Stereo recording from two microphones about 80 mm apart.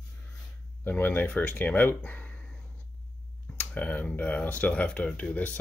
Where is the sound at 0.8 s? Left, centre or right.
Left.